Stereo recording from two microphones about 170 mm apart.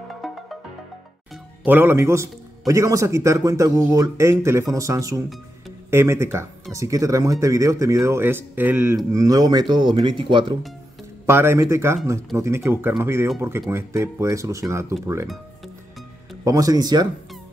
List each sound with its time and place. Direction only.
0.2 s music: centre (ahead or behind)
1.7 s a man's voice: 10° right (ahead or behind); by 10.6 s 30° right (ahead or behind)
11.2 s a man's voice: 15° right (ahead or behind)
16.4 s speech: 20° right (ahead or behind)